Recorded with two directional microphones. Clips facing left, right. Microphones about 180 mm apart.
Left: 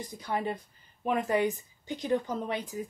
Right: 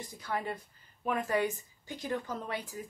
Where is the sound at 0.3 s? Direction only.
20° left (ahead or behind).